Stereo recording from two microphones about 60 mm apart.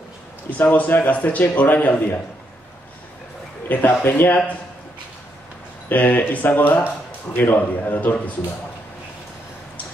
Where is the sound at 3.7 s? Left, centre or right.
Left.